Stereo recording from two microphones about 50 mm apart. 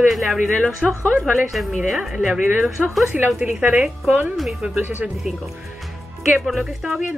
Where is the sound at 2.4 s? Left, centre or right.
Right.